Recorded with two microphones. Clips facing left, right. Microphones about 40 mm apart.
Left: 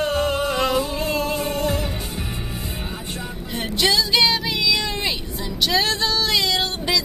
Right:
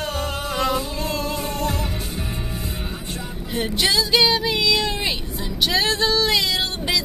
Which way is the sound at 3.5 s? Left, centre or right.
Centre.